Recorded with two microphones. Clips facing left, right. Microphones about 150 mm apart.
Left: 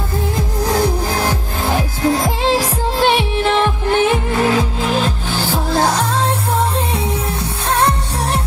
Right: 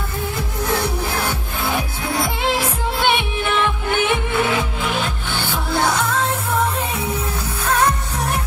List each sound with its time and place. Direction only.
0.7 s music: 40° left (ahead or behind)
7.6 s music: 30° left (ahead or behind)